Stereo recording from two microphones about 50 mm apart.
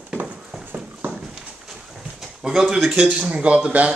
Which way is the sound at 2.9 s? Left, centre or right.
Right.